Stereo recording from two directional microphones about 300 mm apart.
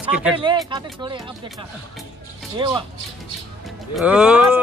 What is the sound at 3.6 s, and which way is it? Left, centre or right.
Speech, centre.